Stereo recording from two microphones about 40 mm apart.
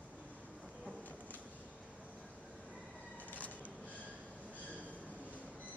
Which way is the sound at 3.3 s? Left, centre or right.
Left.